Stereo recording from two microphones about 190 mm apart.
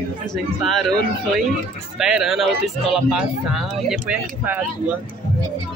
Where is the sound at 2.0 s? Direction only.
Centre (ahead or behind).